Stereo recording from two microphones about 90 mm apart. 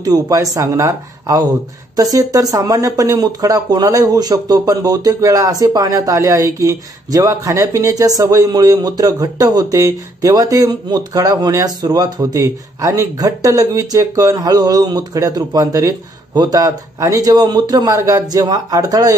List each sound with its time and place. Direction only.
0.0 s speech: 40° right (ahead or behind)